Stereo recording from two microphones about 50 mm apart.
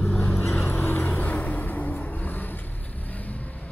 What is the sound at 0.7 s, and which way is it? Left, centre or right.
Vehicle, left.